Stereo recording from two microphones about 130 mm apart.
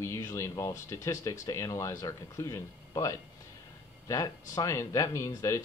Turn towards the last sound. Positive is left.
turn(degrees=25)  # may be behind; listen again after turning